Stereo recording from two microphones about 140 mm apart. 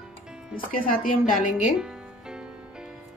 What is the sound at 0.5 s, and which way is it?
Speech, 90° left.